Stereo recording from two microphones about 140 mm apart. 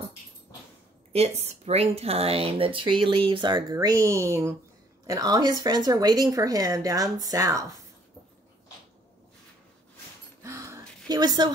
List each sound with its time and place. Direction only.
1.1 s speech: 50° right (ahead or behind)
3.7 s a woman's voice: 20° right (ahead or behind)
10.4 s a sound: 20° right (ahead or behind)